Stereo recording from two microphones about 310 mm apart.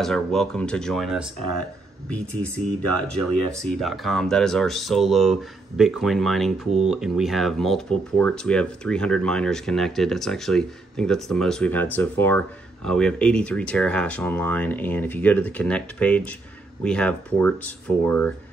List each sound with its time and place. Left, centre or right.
0.0 s speech: centre
2.8 s speech: right
3.5 s speech: centre